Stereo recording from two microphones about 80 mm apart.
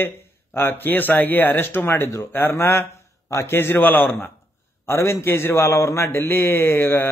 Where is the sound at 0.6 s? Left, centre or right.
Left.